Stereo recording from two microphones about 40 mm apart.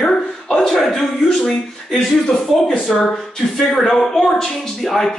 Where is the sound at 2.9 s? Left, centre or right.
Centre.